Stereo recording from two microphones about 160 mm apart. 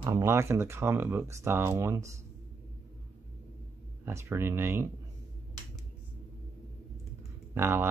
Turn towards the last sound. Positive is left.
turn(degrees=-15)  # may be behind; listen again after turning